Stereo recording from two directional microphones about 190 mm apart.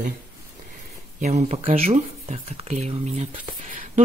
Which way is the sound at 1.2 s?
40° right (ahead or behind).